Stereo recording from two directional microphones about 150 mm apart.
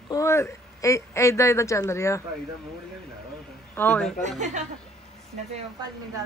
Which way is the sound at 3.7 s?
10° left (ahead or behind).